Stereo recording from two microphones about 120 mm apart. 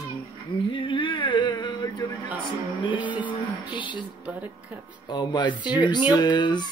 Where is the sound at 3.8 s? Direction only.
40° left (ahead or behind).